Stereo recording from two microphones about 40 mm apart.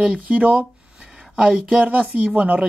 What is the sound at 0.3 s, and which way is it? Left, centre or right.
Speech, right.